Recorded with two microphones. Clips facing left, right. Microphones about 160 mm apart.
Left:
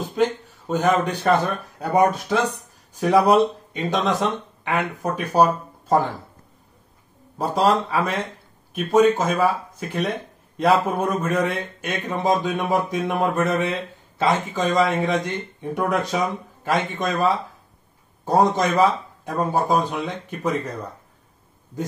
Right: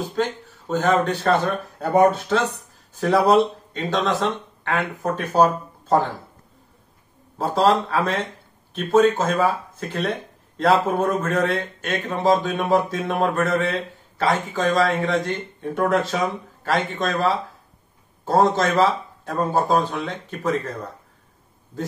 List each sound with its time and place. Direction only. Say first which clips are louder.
0.1 s speech: left 3 dB; 15° left (ahead or behind)
7.3 s speech: right 1 dB; 10° left (ahead or behind)